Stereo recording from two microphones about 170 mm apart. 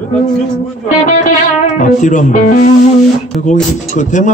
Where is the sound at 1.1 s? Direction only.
45° left (ahead or behind).